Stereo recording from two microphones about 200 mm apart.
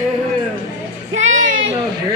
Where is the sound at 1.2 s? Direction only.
40° right (ahead or behind).